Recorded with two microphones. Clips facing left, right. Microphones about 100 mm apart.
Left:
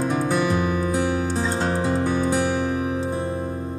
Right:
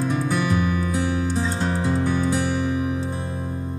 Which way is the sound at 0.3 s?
25° left (ahead or behind).